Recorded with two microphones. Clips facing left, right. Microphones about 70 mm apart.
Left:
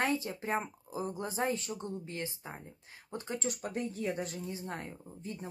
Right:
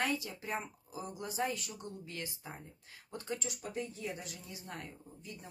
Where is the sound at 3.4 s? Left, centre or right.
Left.